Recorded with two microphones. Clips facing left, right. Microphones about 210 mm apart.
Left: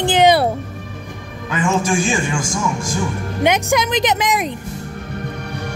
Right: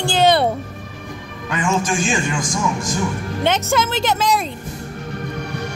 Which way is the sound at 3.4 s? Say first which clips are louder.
Left 2 dB; 15° left (ahead or behind).